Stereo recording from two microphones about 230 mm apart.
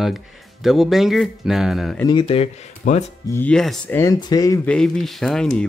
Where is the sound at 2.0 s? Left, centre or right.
Left.